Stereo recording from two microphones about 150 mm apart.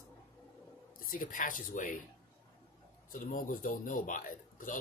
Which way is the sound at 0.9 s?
70° left (ahead or behind).